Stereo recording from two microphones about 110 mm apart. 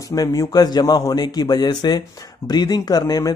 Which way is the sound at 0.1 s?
35° left (ahead or behind).